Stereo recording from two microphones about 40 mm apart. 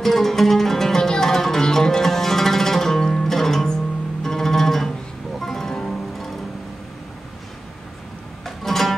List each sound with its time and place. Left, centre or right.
0.0 s music: centre
8.5 s music: centre